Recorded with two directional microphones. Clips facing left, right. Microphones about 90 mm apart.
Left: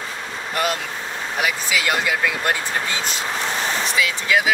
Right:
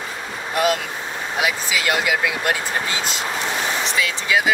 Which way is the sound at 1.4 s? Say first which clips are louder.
Even; 10° right (ahead or behind).